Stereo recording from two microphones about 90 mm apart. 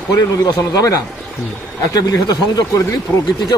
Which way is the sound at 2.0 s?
50° left (ahead or behind).